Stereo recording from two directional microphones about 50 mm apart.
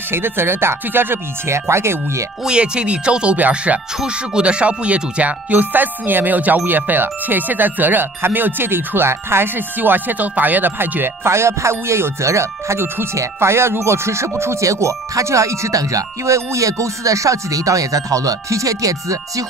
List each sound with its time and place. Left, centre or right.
0.1 s speech: right
2.4 s speech: centre
4.0 s speech: centre; by 9.5 s right
9.6 s speech: right
11.2 s speech: right
12.8 s speech: right
13.1 s speech: right
14.4 s speech: right